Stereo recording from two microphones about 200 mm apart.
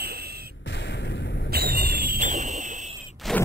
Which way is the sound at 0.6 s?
60° left (ahead or behind).